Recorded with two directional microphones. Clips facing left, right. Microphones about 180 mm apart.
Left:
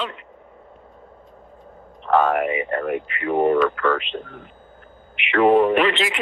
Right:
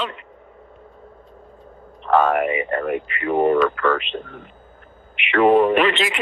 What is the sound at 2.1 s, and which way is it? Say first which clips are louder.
Speech: right 1 dB; 70° right (ahead or behind).